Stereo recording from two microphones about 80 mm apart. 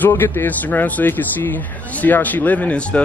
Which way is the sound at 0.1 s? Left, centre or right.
Left.